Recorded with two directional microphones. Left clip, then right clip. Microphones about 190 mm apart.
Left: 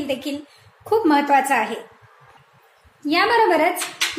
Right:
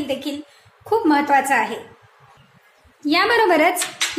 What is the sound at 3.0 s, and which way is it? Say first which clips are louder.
Speech: even; 10° right (ahead or behind).